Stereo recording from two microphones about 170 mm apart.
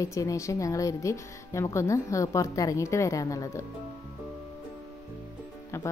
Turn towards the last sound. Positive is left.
turn(degrees=15)  # may be behind; listen again after turning